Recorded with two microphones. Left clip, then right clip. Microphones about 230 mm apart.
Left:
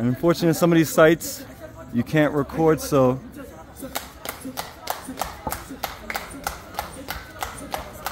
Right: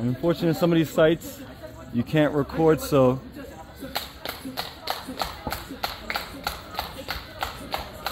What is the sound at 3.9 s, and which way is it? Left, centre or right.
Clapping, left.